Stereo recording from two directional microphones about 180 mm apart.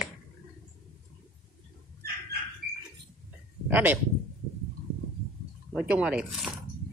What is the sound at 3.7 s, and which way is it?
Speech, 10° right (ahead or behind).